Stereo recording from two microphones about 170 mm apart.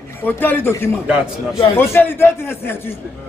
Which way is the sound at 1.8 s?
15° left (ahead or behind).